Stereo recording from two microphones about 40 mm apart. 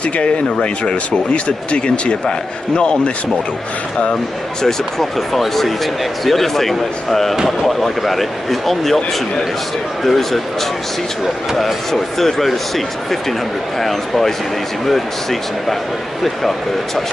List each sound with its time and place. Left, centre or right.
0.0 s speech: left
4.6 s speech: centre
10.0 s speech: centre
11.5 s speech: centre